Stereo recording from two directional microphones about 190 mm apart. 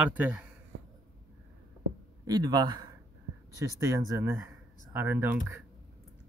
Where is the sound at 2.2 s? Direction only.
20° right (ahead or behind).